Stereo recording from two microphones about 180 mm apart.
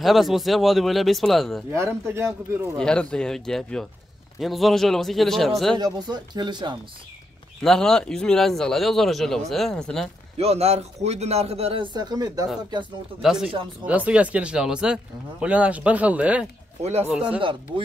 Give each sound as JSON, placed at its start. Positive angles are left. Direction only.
{"t": 0.0, "sound": "speech", "side_deg": 0}
{"t": 1.7, "sound": "speech", "side_deg": -15}
{"t": 2.8, "sound": "speech", "side_deg": 5}
{"t": 5.8, "sound": "speech", "side_deg": -25}
{"t": 7.6, "sound": "speech", "side_deg": 5}
{"t": 10.3, "sound": "a man's voice", "side_deg": -35}
{"t": 13.2, "sound": "speech", "side_deg": -5}
{"t": 16.8, "sound": "a man's voice", "side_deg": -35}
{"t": 17.1, "sound": "speech", "side_deg": -5}
{"t": 17.4, "sound": "speech", "side_deg": -30}